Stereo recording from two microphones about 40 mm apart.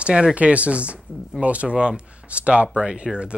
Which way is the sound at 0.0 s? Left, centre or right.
Right.